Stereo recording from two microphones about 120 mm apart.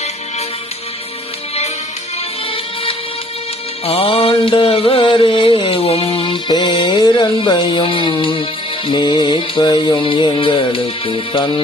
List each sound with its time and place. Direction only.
2.5 s music: 50° left (ahead or behind)